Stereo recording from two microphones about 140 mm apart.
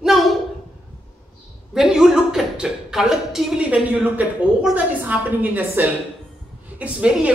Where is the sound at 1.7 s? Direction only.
5° right (ahead or behind).